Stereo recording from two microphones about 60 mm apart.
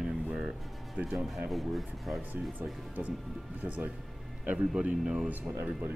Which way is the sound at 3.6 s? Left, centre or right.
Right.